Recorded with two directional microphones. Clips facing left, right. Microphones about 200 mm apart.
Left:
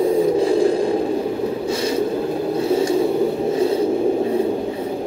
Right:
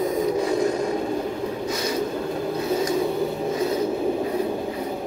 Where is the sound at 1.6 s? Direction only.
30° left (ahead or behind).